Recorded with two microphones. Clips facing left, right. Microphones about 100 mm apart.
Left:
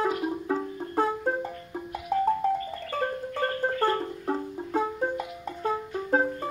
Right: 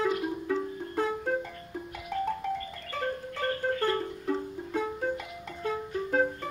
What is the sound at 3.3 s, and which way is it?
Music, 40° left (ahead or behind).